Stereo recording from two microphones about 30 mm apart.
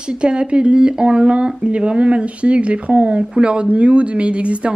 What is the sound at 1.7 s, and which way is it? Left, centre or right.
Speech, right.